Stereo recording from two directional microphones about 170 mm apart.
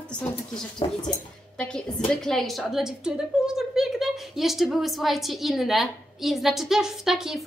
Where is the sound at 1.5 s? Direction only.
5° left (ahead or behind).